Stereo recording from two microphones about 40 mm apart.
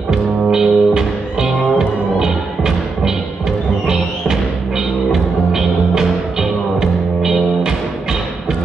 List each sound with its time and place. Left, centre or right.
0.1 s music: centre
3.8 s music: centre
7.2 s music: centre